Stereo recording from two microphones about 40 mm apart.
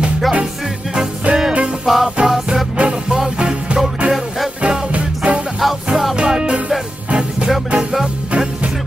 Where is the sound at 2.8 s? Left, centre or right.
Right.